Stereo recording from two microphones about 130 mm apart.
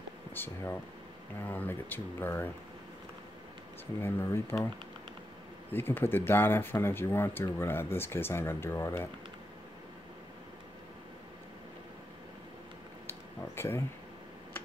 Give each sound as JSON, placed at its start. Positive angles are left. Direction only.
{"t": 0.3, "sound": "speech", "side_deg": 15}
{"t": 4.0, "sound": "speech", "side_deg": 20}
{"t": 5.7, "sound": "speech", "side_deg": 15}
{"t": 13.6, "sound": "speech", "side_deg": 20}